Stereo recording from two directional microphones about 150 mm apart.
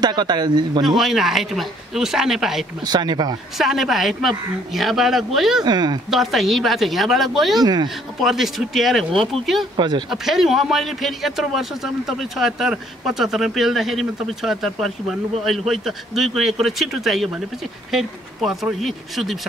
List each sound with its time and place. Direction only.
0.0 s speech: 30° right (ahead or behind)
0.8 s speech: centre (ahead or behind)
2.8 s speech: 30° right (ahead or behind)
3.5 s speech: centre (ahead or behind)
5.6 s speech: 30° right (ahead or behind)
6.0 s speech: centre (ahead or behind)
7.6 s speech: 25° right (ahead or behind)
8.2 s speech: centre (ahead or behind)
9.8 s speech: 30° right (ahead or behind)
10.0 s speech: centre (ahead or behind)